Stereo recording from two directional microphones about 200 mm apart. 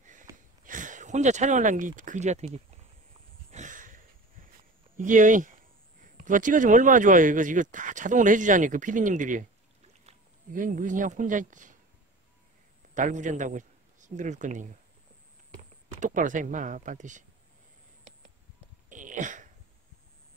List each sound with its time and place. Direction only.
0.0 s sniff: 40° right (ahead or behind)
0.7 s speech: 40° right (ahead or behind)
3.5 s a sound: 40° right (ahead or behind)
4.9 s speech: 40° right (ahead or behind)
12.9 s a man's voice: 40° right (ahead or behind)
16.0 s speech: 40° right (ahead or behind)
18.9 s a sound: 40° right (ahead or behind)